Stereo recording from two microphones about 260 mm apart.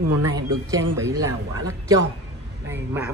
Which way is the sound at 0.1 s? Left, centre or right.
Right.